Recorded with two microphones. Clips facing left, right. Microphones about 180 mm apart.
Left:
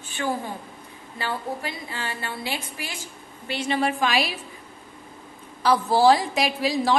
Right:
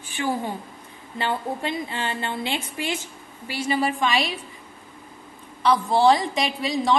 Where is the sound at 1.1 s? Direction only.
25° right (ahead or behind).